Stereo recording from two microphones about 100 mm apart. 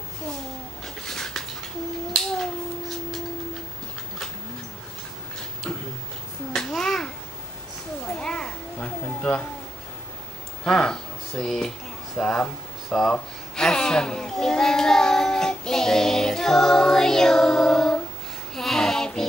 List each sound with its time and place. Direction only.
1.0 s dog: 5° left (ahead or behind)
6.5 s babbling: 5° left (ahead or behind)
8.2 s a sound: 10° left (ahead or behind)
10.6 s a sound: 10° left (ahead or behind)
12.2 s a child's voice: 10° left (ahead or behind)
18.5 s child singing: 5° left (ahead or behind)